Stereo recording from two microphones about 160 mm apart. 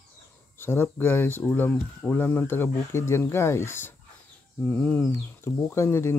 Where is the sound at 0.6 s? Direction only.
15° left (ahead or behind).